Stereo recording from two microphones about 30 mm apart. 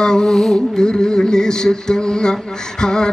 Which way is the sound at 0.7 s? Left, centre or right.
Left.